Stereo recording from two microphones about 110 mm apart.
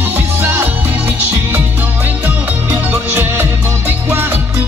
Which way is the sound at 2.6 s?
20° right (ahead or behind).